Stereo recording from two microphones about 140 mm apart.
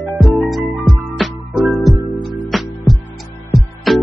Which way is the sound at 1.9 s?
20° right (ahead or behind).